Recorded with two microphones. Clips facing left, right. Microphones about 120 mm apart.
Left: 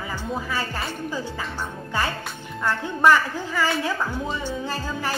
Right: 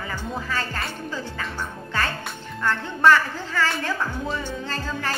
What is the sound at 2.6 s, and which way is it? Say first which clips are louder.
A woman's voice: even; 15° left (ahead or behind).